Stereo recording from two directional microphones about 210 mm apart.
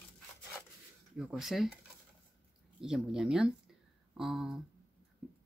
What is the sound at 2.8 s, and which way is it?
Speech, 5° right (ahead or behind).